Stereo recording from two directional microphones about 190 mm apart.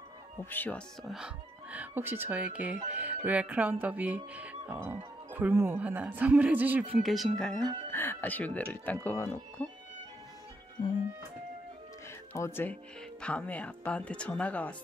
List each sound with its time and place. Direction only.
0.5 s speech: 10° left (ahead or behind)
10.8 s speech: 25° left (ahead or behind)
12.4 s speech: 10° left (ahead or behind)